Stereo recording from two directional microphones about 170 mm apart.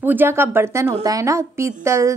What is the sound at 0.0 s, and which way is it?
A woman's voice, 10° right (ahead or behind).